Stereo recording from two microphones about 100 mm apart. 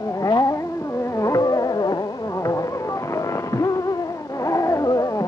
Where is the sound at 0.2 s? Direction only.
35° left (ahead or behind).